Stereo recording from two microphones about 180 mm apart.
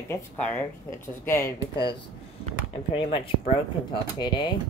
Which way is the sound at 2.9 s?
30° left (ahead or behind).